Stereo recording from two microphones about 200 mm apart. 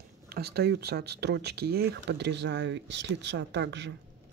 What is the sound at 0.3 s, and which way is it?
Speech, 55° right (ahead or behind).